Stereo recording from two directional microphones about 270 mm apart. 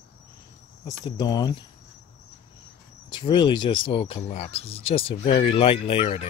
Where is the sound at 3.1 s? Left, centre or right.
Centre.